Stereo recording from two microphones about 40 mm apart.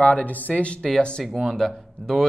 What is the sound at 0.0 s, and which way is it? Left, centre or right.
Speech, left.